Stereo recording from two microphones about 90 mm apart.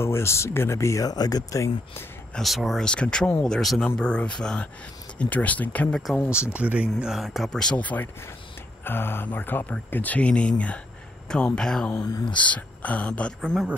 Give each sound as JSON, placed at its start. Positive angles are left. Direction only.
{"t": 0.0, "sound": "speech", "side_deg": 30}
{"t": 2.3, "sound": "speech", "side_deg": 0}
{"t": 2.8, "sound": "speech", "side_deg": 10}
{"t": 6.3, "sound": "speech", "side_deg": -10}
{"t": 7.0, "sound": "speech", "side_deg": -5}
{"t": 7.7, "sound": "speech", "side_deg": 15}
{"t": 12.0, "sound": "speech", "side_deg": 45}
{"t": 12.3, "sound": "speech", "side_deg": 15}
{"t": 13.4, "sound": "speech", "side_deg": 5}